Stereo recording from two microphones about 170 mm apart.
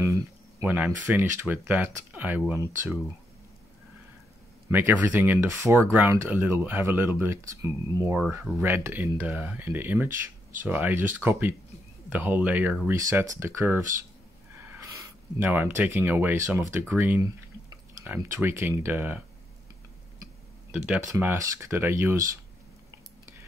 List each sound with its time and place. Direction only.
0.0 s speech: 20° right (ahead or behind)
4.6 s speech: 10° right (ahead or behind)
15.3 s speech: 10° right (ahead or behind)
20.7 s speech: 5° right (ahead or behind)